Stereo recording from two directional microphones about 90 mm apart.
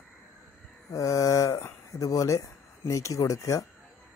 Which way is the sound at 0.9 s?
40° left (ahead or behind).